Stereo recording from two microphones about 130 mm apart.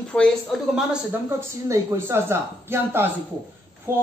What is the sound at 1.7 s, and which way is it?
Speech, 20° right (ahead or behind).